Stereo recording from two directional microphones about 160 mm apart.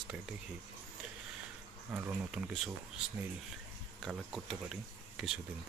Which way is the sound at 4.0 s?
Centre (ahead or behind).